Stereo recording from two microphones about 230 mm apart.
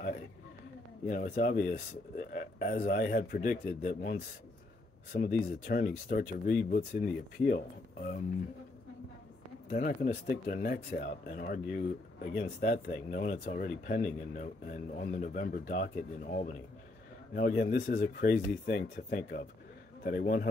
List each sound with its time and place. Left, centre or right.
1.0 s speech: left
9.7 s speech: left